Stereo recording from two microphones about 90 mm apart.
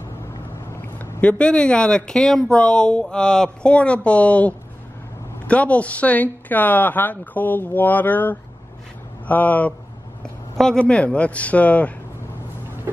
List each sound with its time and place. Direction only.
0.9 s speech: 10° left (ahead or behind)
10.2 s speech: 5° left (ahead or behind)